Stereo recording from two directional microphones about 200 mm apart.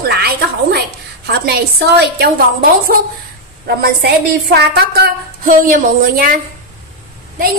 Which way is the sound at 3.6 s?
55° right (ahead or behind).